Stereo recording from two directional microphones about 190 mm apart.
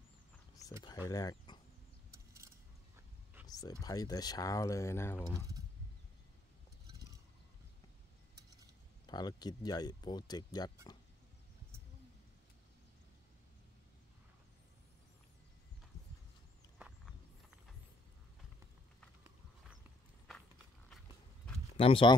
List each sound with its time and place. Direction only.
0.7 s speech: 20° left (ahead or behind)
2.0 s mechanisms: 15° right (ahead or behind)
3.4 s a sound: 20° left (ahead or behind)
3.8 s speech: 20° left (ahead or behind)
9.0 s speech: 20° left (ahead or behind)
21.7 s speech: 30° left (ahead or behind)